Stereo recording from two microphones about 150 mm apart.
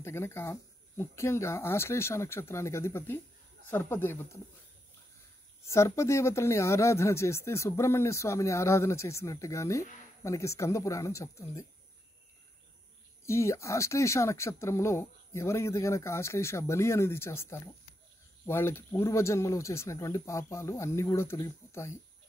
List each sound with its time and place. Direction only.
0.0 s speech: 15° left (ahead or behind)
5.7 s speech: 20° left (ahead or behind)
13.2 s speech: 20° left (ahead or behind)